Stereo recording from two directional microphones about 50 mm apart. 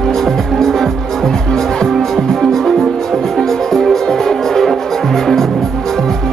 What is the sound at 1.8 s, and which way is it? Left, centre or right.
Music, centre.